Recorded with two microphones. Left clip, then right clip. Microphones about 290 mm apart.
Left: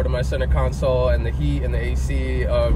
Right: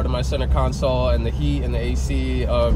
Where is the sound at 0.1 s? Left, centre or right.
Centre.